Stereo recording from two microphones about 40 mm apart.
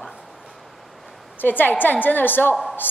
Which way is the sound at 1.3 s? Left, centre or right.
Left.